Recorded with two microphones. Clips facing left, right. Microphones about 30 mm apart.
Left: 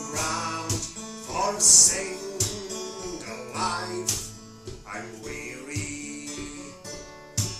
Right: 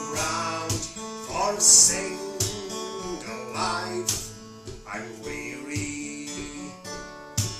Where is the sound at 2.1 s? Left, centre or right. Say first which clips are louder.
Right 1 dB; centre.